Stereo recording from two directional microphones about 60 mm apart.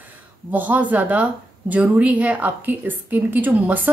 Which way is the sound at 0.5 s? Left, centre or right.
Right.